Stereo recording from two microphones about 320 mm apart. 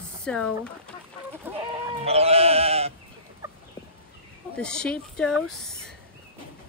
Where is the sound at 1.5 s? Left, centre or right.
Centre.